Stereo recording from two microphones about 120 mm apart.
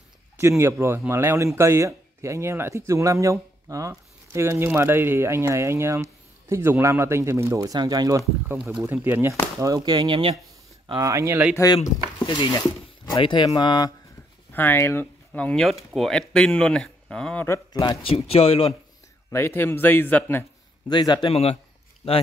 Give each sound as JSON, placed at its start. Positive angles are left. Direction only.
{"t": 0.4, "sound": "speech", "side_deg": -20}
{"t": 8.8, "sound": "speech", "side_deg": -15}
{"t": 9.8, "sound": "speech", "side_deg": -40}
{"t": 11.0, "sound": "speech", "side_deg": -25}
{"t": 11.5, "sound": "speech", "side_deg": 30}
{"t": 14.5, "sound": "speech", "side_deg": 15}
{"t": 15.3, "sound": "speech", "side_deg": 10}
{"t": 17.5, "sound": "speech", "side_deg": 30}
{"t": 18.0, "sound": "speech", "side_deg": 55}
{"t": 19.3, "sound": "a man's voice", "side_deg": 20}
{"t": 20.9, "sound": "speech", "side_deg": 40}
{"t": 21.3, "sound": "speech", "side_deg": 55}